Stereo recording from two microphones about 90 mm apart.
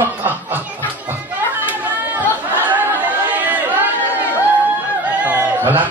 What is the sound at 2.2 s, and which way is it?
Chatter, 20° right (ahead or behind).